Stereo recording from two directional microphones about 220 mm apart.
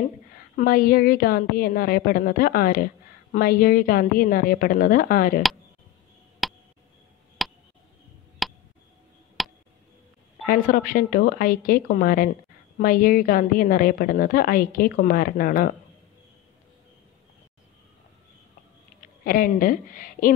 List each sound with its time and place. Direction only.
0.6 s a woman's voice: 40° left (ahead or behind)
6.4 s a sound: centre (ahead or behind)
9.4 s tick: centre (ahead or behind)
10.4 s a woman's voice: 40° left (ahead or behind)
19.2 s a woman's voice: 40° left (ahead or behind)